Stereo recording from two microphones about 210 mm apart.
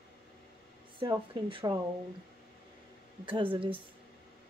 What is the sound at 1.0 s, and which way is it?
Speech, 25° right (ahead or behind).